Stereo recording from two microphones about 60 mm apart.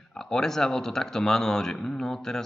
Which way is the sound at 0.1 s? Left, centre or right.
Centre.